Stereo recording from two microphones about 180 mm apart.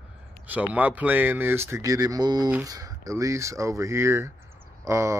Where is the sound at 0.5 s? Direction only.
10° right (ahead or behind).